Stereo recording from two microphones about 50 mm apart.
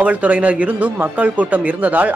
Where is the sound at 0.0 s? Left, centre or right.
Right.